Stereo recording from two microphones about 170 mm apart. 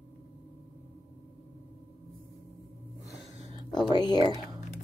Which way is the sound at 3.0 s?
35° right (ahead or behind).